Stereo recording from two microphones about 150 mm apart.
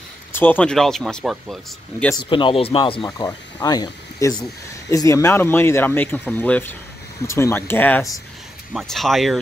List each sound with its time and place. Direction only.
0.3 s speech: 10° left (ahead or behind)
2.2 s speech: 35° left (ahead or behind)
3.1 s speech: 25° left (ahead or behind)
8.7 s speech: centre (ahead or behind)